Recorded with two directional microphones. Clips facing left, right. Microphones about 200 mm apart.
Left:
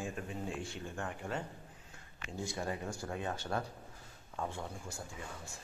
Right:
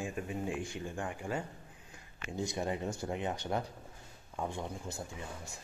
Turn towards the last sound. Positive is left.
turn(degrees=-20)  # may be behind; listen again after turning